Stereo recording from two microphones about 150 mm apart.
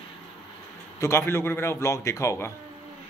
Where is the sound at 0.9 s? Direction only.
20° left (ahead or behind).